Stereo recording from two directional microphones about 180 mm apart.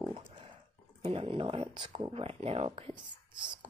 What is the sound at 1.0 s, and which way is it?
Speech, 30° right (ahead or behind).